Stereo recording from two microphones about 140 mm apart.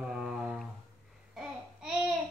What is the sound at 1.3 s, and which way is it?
Babbling, 5° right (ahead or behind).